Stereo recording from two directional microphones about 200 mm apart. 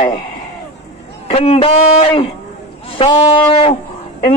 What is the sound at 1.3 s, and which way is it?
Speech, 30° left (ahead or behind).